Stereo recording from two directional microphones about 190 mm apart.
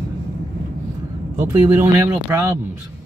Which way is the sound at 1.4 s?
10° right (ahead or behind).